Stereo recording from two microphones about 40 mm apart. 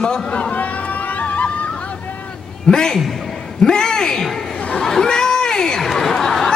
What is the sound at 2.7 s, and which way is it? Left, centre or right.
A man's voice, centre.